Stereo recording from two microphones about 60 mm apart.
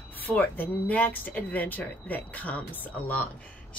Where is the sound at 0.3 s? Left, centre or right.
Left.